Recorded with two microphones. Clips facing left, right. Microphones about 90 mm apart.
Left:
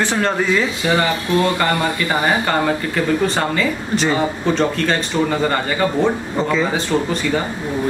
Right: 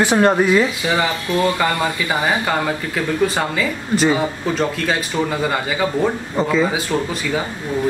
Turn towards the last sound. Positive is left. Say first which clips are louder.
# left 2 dB
turn(degrees=-5)  # may be behind; listen again after turning